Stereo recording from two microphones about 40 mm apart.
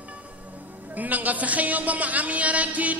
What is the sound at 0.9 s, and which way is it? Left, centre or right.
A man's voice, right.